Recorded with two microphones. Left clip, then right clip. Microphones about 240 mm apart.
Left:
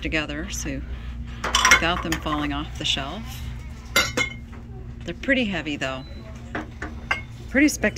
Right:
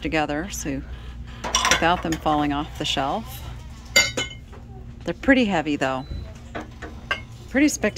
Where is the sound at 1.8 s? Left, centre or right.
Centre.